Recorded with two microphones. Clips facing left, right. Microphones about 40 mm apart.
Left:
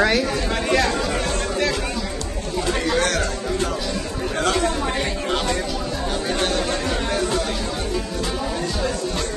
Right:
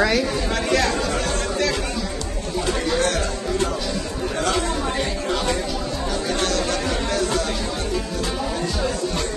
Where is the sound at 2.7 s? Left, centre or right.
Left.